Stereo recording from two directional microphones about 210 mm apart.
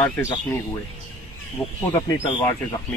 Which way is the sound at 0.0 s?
15° left (ahead or behind).